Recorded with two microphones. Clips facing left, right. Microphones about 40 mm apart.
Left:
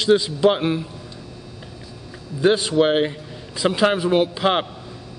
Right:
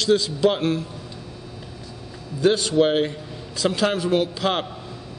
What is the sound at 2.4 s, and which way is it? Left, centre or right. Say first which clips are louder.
A man's voice: left 1 dB; centre.